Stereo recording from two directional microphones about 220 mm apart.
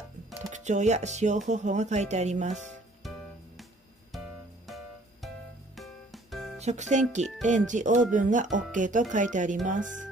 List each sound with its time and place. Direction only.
0.5 s speech: 30° right (ahead or behind)
3.0 s music: centre (ahead or behind)
6.6 s speech: 30° right (ahead or behind)